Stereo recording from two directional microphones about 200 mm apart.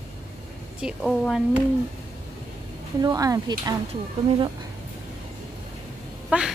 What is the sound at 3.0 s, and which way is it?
Speech, 20° right (ahead or behind).